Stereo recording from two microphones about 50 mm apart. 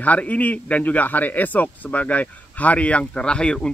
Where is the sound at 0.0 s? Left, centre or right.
Left.